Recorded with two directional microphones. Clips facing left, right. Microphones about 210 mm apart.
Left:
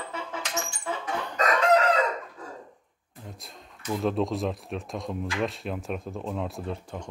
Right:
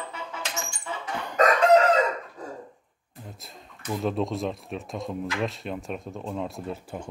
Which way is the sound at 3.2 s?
Centre (ahead or behind).